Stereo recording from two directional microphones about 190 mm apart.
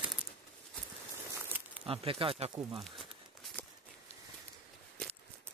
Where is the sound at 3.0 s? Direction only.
Centre (ahead or behind).